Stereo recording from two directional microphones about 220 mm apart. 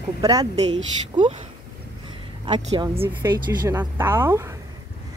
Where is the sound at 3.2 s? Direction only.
10° right (ahead or behind).